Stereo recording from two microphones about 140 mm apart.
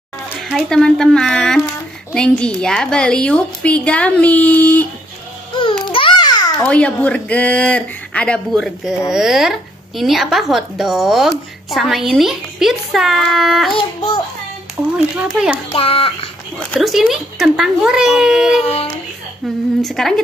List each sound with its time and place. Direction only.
0.4 s a woman's voice: centre (ahead or behind)
5.9 s a sound: 35° left (ahead or behind)
6.6 s a woman's voice: 10° left (ahead or behind)
13.7 s a child's voice: 30° left (ahead or behind)
15.1 s speech: 5° right (ahead or behind)
15.7 s a child's voice: 40° left (ahead or behind)
16.8 s a woman's voice: centre (ahead or behind)
19.8 s a woman's voice: centre (ahead or behind)